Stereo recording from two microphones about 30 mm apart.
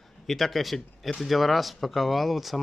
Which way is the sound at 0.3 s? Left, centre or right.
Centre.